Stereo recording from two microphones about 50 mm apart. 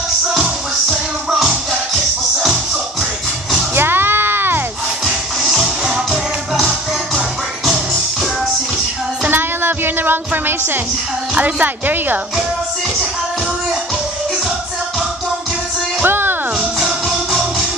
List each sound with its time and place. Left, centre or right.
0.3 s music: centre
3.7 s a sound: right
5.0 s music: centre
9.3 s music: right
11.3 s speech: right
16.0 s music: right
16.8 s music: centre